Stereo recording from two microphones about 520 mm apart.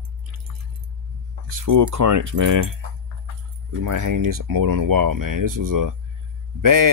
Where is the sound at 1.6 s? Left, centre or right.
Right.